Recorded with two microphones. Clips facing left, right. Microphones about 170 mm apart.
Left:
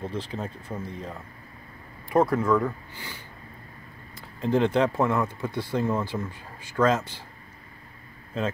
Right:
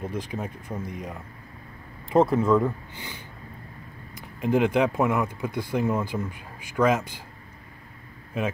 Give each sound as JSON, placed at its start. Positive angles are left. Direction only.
{"t": 0.0, "sound": "speech", "side_deg": -15}
{"t": 8.3, "sound": "speech", "side_deg": -10}